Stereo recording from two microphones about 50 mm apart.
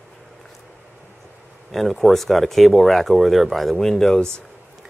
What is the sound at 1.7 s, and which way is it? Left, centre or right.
Speech, centre.